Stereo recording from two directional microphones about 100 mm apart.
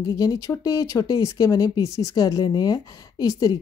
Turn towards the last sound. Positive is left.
turn(degrees=40)  # may be behind; listen again after turning